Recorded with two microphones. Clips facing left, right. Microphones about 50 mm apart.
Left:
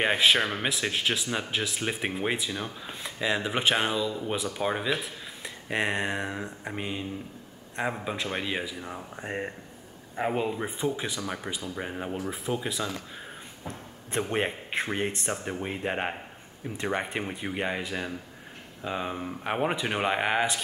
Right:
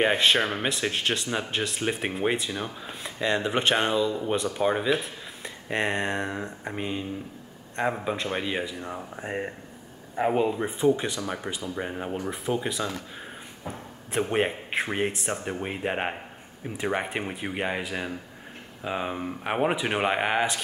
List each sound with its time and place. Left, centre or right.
0.0 s speech: centre